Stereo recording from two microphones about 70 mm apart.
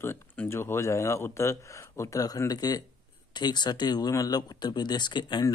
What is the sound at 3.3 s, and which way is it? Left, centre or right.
Speech, left.